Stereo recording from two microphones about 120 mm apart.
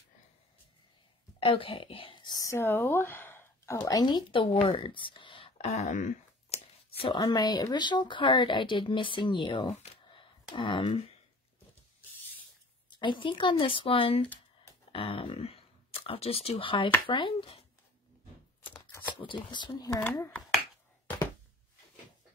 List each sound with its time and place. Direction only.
1.4 s speech: 50° left (ahead or behind)
4.7 s a sound: 45° left (ahead or behind)
5.7 s a sound: 75° left (ahead or behind)
7.0 s speech: 45° left (ahead or behind)
7.2 s speech: 35° left (ahead or behind)
12.9 s speech: 40° left (ahead or behind)
19.5 s speech: 40° left (ahead or behind)
20.0 s speech: 20° left (ahead or behind)